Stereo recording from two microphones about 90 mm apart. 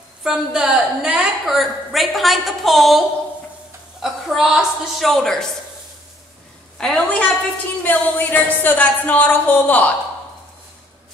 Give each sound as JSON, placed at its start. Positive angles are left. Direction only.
{"t": 0.2, "sound": "a woman's voice", "side_deg": -5}
{"t": 6.8, "sound": "a woman's voice", "side_deg": 10}